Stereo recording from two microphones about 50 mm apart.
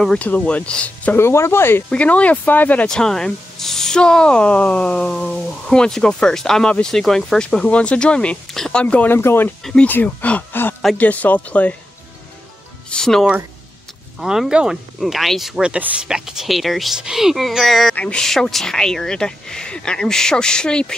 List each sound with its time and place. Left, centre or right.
0.2 s speech: left
1.1 s speech: left
1.9 s speech: left
2.9 s speech: centre
7.6 s speech: left
8.8 s speech: left
9.1 s speech: left
10.0 s speech: left
10.5 s speech: left
11.0 s speech: left
12.9 s speech: centre
14.5 s speech: centre
15.0 s speech: centre
15.5 s speech: centre